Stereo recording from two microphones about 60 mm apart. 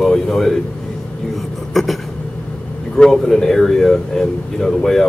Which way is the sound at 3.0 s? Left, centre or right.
Centre.